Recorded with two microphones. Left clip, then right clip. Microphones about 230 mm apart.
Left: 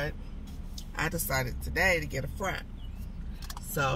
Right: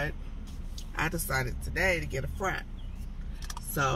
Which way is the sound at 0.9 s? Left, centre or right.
Centre.